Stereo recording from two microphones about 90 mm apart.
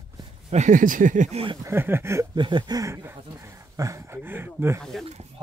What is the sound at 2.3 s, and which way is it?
Speech, 60° right (ahead or behind).